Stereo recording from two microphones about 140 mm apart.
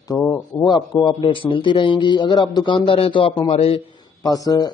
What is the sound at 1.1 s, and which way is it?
A man's voice, 40° left (ahead or behind).